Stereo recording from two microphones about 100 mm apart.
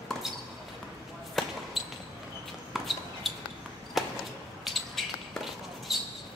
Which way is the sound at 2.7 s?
Centre (ahead or behind).